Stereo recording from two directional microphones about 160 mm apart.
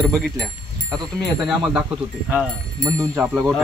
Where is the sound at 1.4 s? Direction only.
5° right (ahead or behind).